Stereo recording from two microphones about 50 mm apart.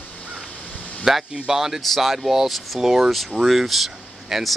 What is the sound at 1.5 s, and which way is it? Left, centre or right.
Speech, centre.